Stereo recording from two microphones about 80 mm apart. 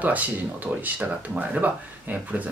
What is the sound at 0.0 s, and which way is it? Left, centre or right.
Speech, centre.